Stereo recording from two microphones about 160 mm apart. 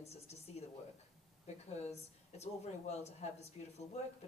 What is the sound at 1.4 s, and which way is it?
A woman's voice, 45° left (ahead or behind).